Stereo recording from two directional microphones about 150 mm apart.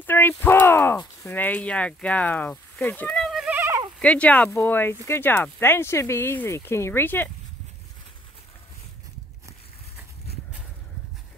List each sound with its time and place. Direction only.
0.0 s speech: 15° left (ahead or behind)
3.5 s a sound: 15° right (ahead or behind)
4.0 s speech: 10° left (ahead or behind)